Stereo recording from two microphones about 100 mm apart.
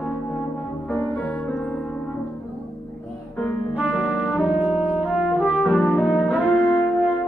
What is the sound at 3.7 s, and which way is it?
Brass instrument, 15° right (ahead or behind).